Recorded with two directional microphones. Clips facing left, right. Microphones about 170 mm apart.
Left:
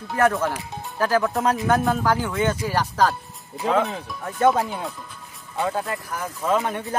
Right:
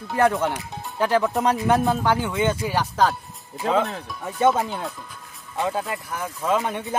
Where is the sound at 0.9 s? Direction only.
20° right (ahead or behind).